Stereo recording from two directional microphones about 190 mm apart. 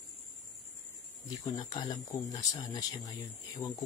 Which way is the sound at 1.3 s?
20° left (ahead or behind).